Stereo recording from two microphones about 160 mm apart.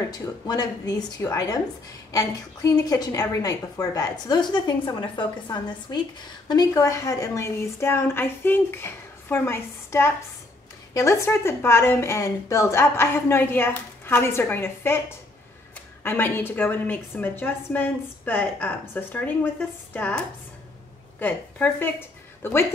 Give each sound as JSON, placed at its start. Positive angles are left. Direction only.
{"t": 0.1, "sound": "a woman's voice", "side_deg": 25}